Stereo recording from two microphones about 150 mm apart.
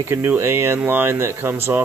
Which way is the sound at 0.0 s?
15° right (ahead or behind).